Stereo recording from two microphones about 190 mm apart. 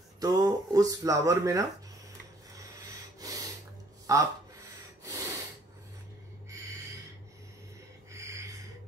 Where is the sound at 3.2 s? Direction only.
20° right (ahead or behind).